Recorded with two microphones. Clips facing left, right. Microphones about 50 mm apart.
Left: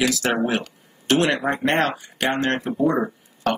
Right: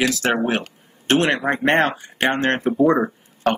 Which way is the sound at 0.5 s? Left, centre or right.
Right.